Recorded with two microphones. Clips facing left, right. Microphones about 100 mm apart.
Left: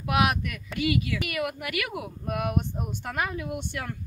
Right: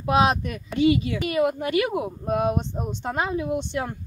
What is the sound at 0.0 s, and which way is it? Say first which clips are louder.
Speech: right 5 dB; 30° right (ahead or behind).